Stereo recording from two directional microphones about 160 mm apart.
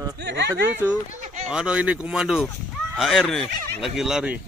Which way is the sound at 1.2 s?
45° right (ahead or behind).